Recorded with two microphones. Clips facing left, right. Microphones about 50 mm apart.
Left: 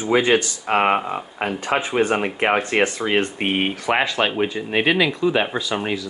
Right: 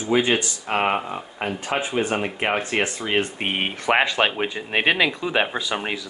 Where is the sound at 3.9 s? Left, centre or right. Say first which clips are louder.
Right 2 dB; centre.